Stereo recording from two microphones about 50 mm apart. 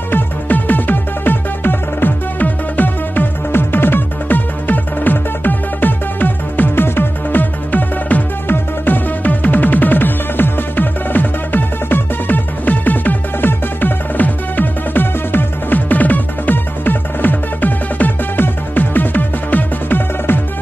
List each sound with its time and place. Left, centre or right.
0.1 s music: left